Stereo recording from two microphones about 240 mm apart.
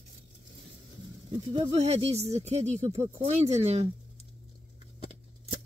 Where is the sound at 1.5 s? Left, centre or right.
Right.